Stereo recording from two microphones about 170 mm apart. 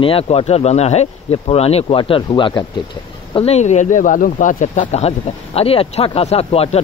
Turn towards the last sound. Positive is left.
turn(degrees=35)  # may be behind; listen again after turning